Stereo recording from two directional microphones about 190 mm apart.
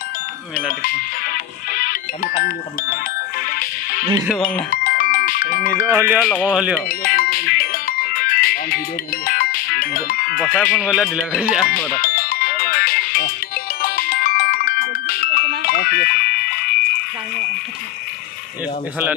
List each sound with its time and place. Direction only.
0.8 s speech: 50° left (ahead or behind)
3.4 s music: 50° left (ahead or behind)
4.3 s speech: 5° left (ahead or behind)
4.6 s music: 50° left (ahead or behind)
5.9 s speech: 15° right (ahead or behind)
6.9 s music: 50° left (ahead or behind)
10.4 s speech: centre (ahead or behind)
12.0 s music: 50° left (ahead or behind)